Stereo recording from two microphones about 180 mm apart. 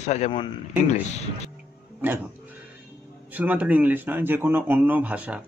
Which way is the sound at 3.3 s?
10° right (ahead or behind).